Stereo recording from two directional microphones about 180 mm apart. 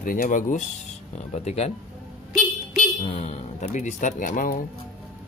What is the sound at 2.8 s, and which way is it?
Speech, 40° left (ahead or behind).